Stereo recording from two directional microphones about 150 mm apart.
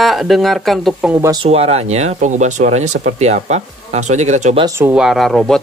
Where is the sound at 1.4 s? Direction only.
45° right (ahead or behind).